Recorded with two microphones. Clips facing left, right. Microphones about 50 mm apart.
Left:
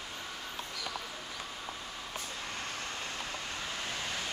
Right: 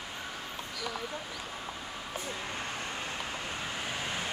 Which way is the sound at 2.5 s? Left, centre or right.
Centre.